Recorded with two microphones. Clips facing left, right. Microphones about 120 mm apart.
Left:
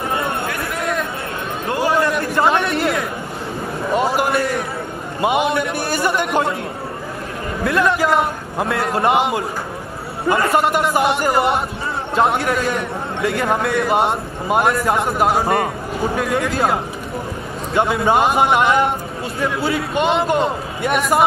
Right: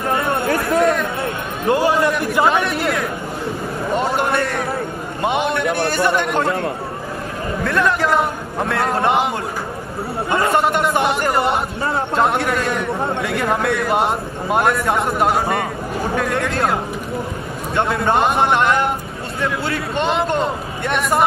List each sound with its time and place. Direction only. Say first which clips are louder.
0.5 s a man's voice: right 7 dB; 30° right (ahead or behind)
2.0 s a man's voice: even; centre (ahead or behind)
7.6 s a man's voice: left 2 dB; centre (ahead or behind)
17.7 s a man's voice: left 2 dB; centre (ahead or behind)